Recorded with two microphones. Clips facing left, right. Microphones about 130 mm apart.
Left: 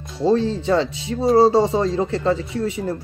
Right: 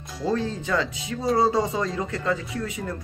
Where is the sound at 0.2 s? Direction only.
30° left (ahead or behind).